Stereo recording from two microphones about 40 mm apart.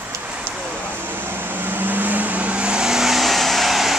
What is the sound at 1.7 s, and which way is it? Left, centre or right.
Vehicle, right.